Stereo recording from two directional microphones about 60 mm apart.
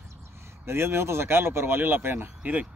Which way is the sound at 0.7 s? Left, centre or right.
Right.